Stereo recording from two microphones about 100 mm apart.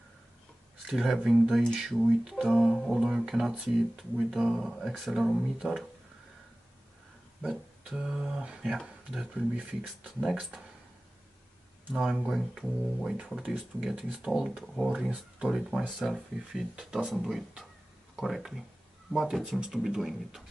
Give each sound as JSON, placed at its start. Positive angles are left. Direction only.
{"t": 0.8, "sound": "speech", "side_deg": 0}
{"t": 7.4, "sound": "speech", "side_deg": -5}
{"t": 11.9, "sound": "speech", "side_deg": -5}